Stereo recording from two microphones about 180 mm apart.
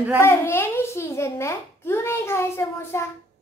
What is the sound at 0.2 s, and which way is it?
A child's voice, 15° left (ahead or behind).